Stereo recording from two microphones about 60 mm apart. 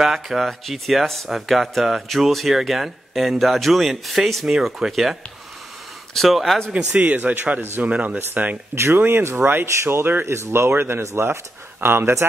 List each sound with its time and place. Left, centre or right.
0.0 s speech: centre
6.1 s speech: centre
6.7 s speech: right
8.2 s speech: right
8.7 s speech: right